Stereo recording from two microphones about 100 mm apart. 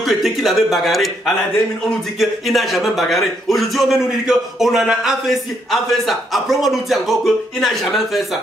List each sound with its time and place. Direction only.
0.1 s a man's voice: centre (ahead or behind)